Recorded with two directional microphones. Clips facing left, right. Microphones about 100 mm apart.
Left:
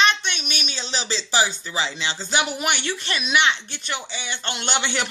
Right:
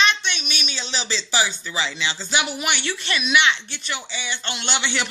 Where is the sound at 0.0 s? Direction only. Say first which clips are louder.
Left 1 dB; 45° left (ahead or behind).